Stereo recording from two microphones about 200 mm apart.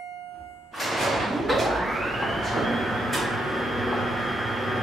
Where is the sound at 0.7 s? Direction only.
Centre (ahead or behind).